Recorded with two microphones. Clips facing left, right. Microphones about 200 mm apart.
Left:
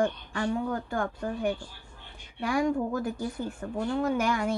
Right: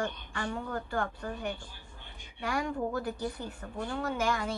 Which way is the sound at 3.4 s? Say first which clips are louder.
Left 6 dB; 45° left (ahead or behind).